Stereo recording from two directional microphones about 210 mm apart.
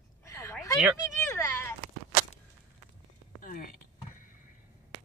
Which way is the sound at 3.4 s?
40° left (ahead or behind).